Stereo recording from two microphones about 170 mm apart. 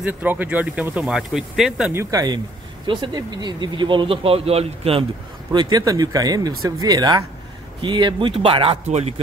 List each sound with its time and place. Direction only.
0.0 s speech: 10° right (ahead or behind)
2.0 s speech: 20° right (ahead or behind); by 5.0 s 35° right (ahead or behind)
5.5 s a man's voice: 25° right (ahead or behind)